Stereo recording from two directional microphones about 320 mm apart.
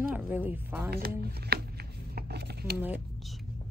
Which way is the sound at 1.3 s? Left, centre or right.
Right.